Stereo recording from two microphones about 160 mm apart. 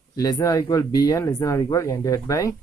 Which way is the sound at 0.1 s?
25° left (ahead or behind).